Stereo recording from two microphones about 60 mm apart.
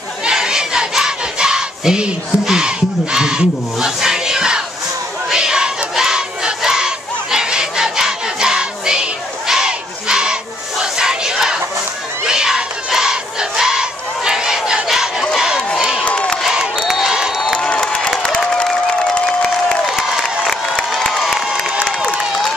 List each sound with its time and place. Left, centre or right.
0.2 s crowd: centre
10.8 s battle cry: centre
15.3 s crowd: centre
16.0 s crowd: centre
16.8 s a sound: centre
17.6 s crowd: centre
20.4 s crowd: centre
21.2 s crowd: centre